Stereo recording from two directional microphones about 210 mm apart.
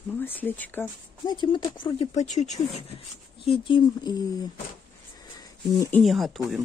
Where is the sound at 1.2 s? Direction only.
20° left (ahead or behind).